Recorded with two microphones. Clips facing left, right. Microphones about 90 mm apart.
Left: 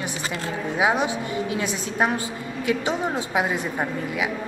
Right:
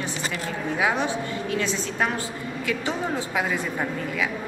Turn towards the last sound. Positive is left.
turn(degrees=20)  # may be behind; listen again after turning